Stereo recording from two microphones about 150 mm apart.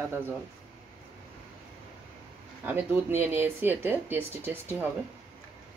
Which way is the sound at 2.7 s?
15° right (ahead or behind).